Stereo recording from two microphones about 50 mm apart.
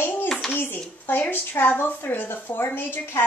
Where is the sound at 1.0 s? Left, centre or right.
Left.